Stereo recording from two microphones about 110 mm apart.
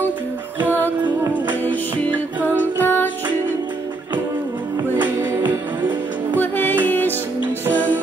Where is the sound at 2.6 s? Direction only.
20° left (ahead or behind).